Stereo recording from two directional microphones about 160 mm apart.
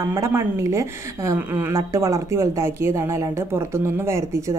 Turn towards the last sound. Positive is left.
turn(degrees=-20)  # may be behind; listen again after turning